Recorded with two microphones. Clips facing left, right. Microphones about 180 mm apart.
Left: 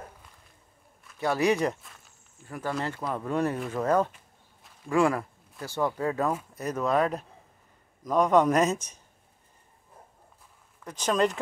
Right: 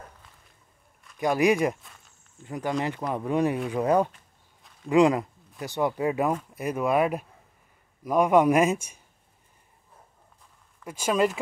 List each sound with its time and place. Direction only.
1.1 s speech: 15° right (ahead or behind)
10.8 s speech: 10° right (ahead or behind)